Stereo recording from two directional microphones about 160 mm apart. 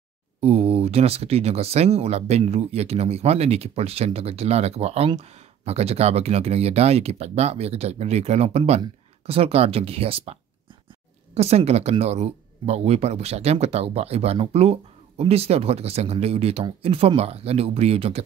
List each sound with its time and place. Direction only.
0.4 s speech: 40° right (ahead or behind)